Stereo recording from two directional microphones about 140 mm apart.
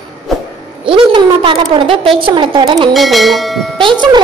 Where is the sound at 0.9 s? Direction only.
40° right (ahead or behind).